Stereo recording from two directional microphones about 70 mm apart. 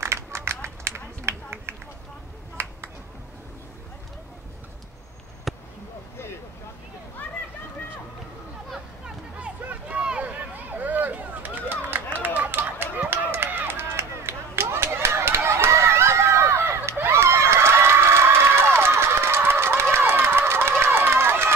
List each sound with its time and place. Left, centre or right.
0.0 s run: right
2.6 s a sound: right
5.5 s basketball bounce: centre
8.7 s hubbub: centre
9.7 s a sound: centre
12.2 s run: right